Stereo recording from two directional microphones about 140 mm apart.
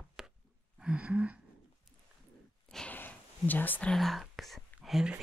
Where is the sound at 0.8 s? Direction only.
10° right (ahead or behind).